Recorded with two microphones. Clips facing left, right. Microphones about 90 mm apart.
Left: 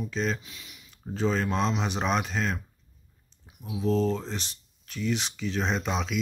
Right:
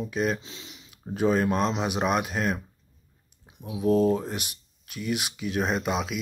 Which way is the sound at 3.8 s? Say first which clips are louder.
Right 4 dB; 15° right (ahead or behind).